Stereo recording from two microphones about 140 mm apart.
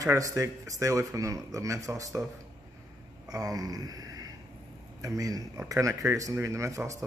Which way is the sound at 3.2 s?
25° right (ahead or behind).